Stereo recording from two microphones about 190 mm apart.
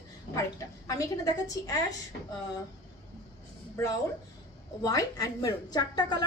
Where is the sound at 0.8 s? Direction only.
20° left (ahead or behind).